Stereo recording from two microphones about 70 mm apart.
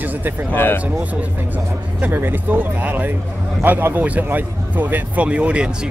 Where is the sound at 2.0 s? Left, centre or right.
Right.